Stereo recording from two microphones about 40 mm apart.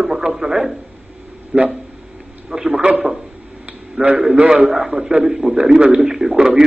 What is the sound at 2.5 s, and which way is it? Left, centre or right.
Speech, centre.